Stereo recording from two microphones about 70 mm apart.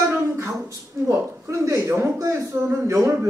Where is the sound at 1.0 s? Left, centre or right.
Right.